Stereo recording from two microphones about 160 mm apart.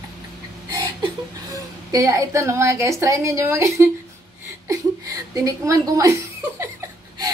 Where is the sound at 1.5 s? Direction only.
20° right (ahead or behind).